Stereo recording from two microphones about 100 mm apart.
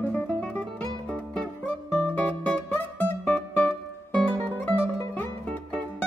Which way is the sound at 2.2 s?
15° left (ahead or behind).